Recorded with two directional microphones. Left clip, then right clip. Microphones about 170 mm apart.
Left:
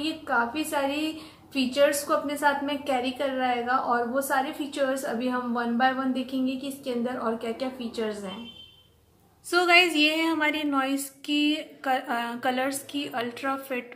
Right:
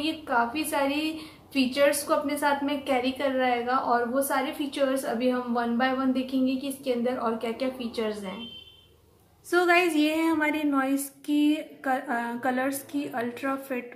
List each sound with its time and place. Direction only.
0.0 s a woman's voice: 5° left (ahead or behind)
9.5 s a woman's voice: 20° right (ahead or behind)